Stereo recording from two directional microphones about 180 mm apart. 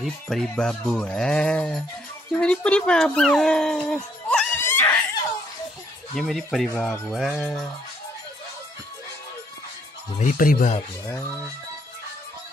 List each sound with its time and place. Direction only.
0.0 s speech: centre (ahead or behind)
4.6 s laughter: 10° left (ahead or behind)
6.1 s speech: centre (ahead or behind)
10.1 s speech: 50° left (ahead or behind)